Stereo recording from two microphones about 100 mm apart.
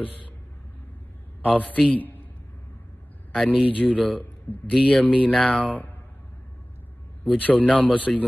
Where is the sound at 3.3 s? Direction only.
10° left (ahead or behind).